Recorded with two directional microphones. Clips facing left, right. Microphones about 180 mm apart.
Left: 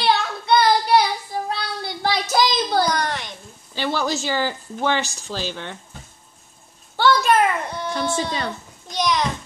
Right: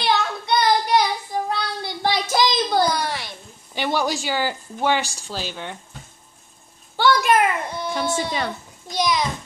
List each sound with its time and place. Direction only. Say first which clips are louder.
0.0 s child singing: left 1 dB; 20° right (ahead or behind)
2.9 s a woman's voice: left 1 dB; 5° right (ahead or behind)
7.0 s a child's voice: left 1 dB; 15° right (ahead or behind)